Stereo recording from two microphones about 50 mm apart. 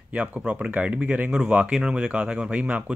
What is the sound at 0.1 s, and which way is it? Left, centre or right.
Speech, right.